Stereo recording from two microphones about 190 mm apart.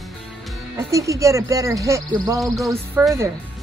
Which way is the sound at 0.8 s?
15° right (ahead or behind).